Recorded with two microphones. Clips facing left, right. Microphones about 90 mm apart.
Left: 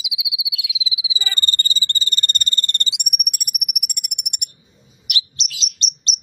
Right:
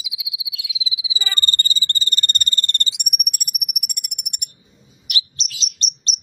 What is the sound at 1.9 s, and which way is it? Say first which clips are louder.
Frog: even; 45° right (ahead or behind).